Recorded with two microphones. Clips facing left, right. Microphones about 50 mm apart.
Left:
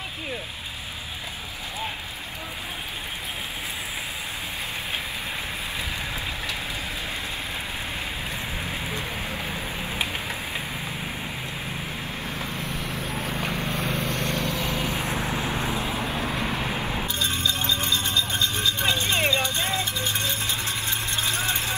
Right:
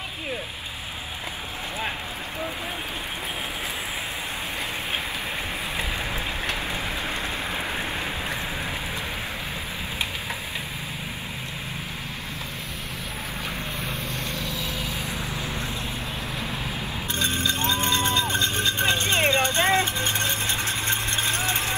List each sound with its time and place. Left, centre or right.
13.4 s vehicle: left
16.0 s vehicle: left
17.1 s music: right